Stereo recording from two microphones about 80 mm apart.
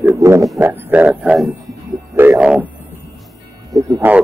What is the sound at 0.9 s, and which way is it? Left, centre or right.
Speech, centre.